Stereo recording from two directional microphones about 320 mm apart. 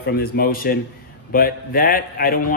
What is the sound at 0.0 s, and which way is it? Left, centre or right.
A man's voice, left.